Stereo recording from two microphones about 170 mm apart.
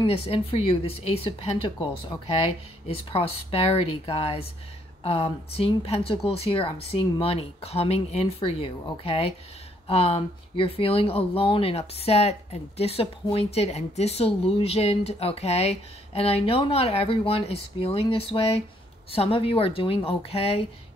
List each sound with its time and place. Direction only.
0.0 s speech: 35° left (ahead or behind)